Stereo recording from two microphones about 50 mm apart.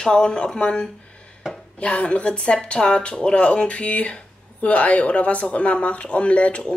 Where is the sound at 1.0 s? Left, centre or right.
Left.